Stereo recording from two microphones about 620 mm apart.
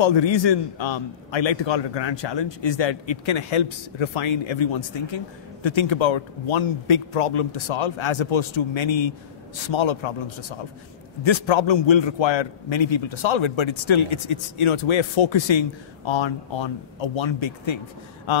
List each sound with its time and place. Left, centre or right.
0.0 s a man's voice: left